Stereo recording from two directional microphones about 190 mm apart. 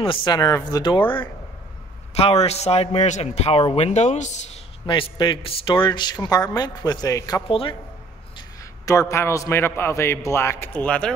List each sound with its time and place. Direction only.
0.0 s speech: 25° left (ahead or behind)
2.1 s a man's voice: 35° left (ahead or behind)
4.8 s speech: 25° left (ahead or behind)
8.4 s a sound: 15° left (ahead or behind)
9.1 s a man's voice: 15° left (ahead or behind)